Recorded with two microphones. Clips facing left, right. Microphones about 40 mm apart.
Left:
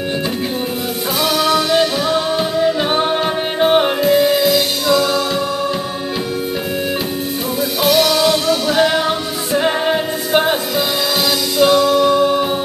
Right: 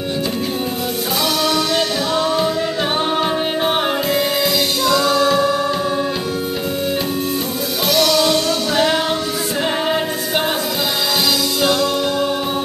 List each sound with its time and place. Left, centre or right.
1.4 s music: centre
3.6 s music: centre
7.8 s music: centre
9.6 s music: centre
11.6 s music: centre